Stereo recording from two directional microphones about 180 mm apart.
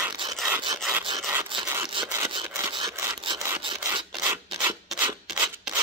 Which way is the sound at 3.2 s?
25° right (ahead or behind).